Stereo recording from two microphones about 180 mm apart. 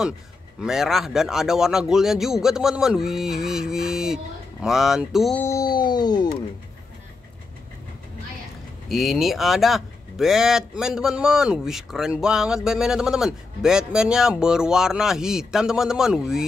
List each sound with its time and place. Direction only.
0.6 s speech: centre (ahead or behind)
5.4 s a sound: 20° left (ahead or behind)
8.8 s speech: centre (ahead or behind)